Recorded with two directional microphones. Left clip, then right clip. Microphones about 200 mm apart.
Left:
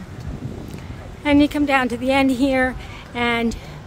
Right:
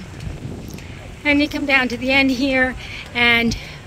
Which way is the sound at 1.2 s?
20° left (ahead or behind).